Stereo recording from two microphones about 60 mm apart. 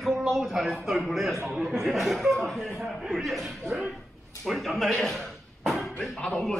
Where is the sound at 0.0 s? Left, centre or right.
Centre.